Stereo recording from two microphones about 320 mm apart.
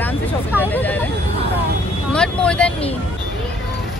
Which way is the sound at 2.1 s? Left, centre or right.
Centre.